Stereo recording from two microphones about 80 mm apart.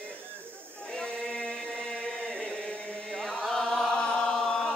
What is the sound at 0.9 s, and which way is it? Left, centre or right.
Music, centre.